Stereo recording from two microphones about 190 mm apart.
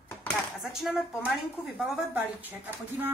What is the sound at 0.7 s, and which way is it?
Speech, centre (ahead or behind).